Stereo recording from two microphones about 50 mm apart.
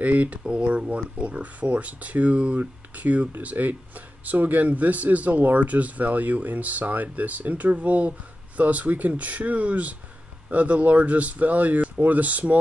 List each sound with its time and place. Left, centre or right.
0.0 s speech: right